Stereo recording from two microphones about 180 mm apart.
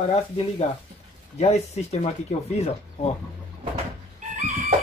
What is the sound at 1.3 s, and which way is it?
Speech, 35° left (ahead or behind).